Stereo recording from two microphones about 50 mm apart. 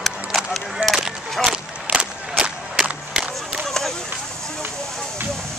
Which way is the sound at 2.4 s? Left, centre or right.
Centre.